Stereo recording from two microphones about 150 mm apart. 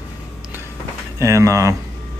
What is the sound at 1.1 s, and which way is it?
Speech, 20° right (ahead or behind).